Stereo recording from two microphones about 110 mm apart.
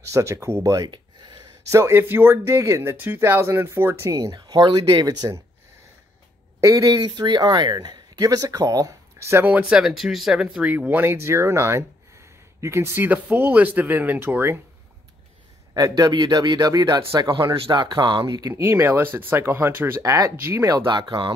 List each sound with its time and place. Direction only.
0.0 s speech: 25° right (ahead or behind)
1.7 s speech: 25° right (ahead or behind)
4.2 s speech: 35° right (ahead or behind)
6.6 s speech: 30° right (ahead or behind)
15.7 s speech: 35° right (ahead or behind)
18.5 s speech: 20° right (ahead or behind)
20.8 s speech: 45° right (ahead or behind)